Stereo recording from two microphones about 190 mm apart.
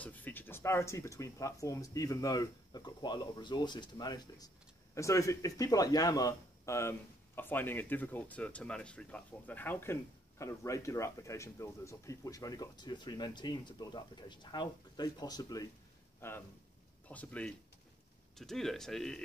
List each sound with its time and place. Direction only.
0.0 s a man's voice: 10° left (ahead or behind)